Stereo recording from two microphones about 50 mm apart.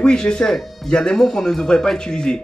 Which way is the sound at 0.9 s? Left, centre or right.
Centre.